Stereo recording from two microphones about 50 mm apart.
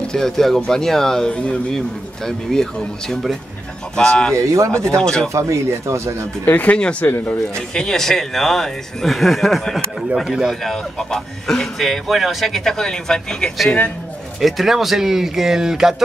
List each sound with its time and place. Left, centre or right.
0.0 s speech: centre
1.3 s speech: left
2.2 s speech: centre
4.4 s speech: right
4.7 s speech: centre
5.3 s speech: right
6.4 s speech: left
6.8 s speech: left
7.5 s speech: centre
10.2 s speech: centre
10.5 s a man's voice: centre
14.4 s speech: centre